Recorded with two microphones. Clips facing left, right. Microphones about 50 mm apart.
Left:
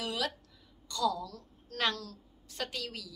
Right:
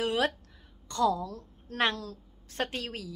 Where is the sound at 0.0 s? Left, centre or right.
Right.